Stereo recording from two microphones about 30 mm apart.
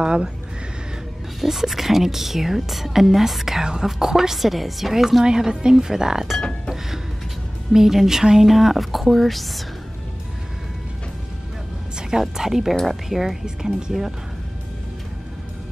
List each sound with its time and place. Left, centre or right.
0.0 s speech: right
1.4 s speech: centre
4.4 s a woman's voice: centre
5.2 s speech: right
7.7 s speech: centre
8.5 s a woman's voice: centre
12.2 s speech: centre
13.6 s speech: right